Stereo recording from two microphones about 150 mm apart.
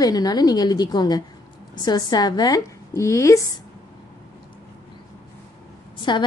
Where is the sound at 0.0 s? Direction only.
25° left (ahead or behind).